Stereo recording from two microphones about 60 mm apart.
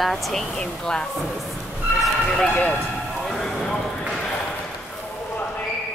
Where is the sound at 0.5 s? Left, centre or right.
Centre.